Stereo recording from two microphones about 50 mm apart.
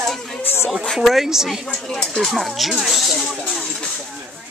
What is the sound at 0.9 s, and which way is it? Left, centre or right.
Speech, centre.